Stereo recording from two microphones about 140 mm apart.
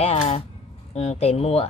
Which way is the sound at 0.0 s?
50° left (ahead or behind).